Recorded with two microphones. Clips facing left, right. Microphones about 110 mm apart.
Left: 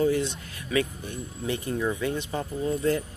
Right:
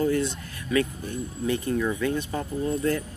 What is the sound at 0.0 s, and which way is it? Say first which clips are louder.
Speech: even; 20° left (ahead or behind).